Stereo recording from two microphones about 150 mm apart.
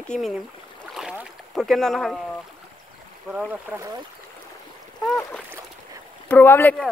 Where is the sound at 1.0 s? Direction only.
5° right (ahead or behind).